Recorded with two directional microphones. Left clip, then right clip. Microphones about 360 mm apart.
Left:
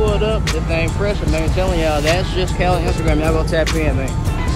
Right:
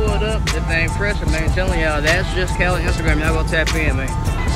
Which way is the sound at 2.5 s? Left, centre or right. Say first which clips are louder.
Left 2 dB; right.